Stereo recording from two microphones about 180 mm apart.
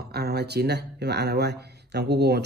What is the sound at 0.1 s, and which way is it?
Speech, 65° right (ahead or behind).